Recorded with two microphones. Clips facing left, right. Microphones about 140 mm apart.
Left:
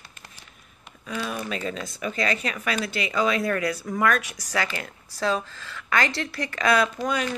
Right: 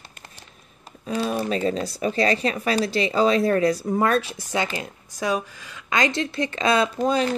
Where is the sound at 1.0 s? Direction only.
35° right (ahead or behind).